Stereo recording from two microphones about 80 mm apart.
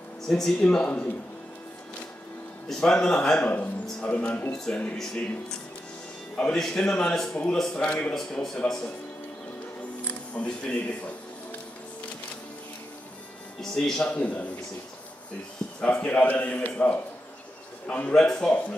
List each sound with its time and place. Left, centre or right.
0.3 s a man's voice: centre
2.7 s a man's voice: centre
10.0 s speech: centre
13.6 s a man's voice: centre
15.8 s a man's voice: centre